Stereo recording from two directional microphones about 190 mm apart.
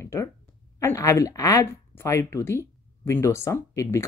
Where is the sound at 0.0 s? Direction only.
15° left (ahead or behind).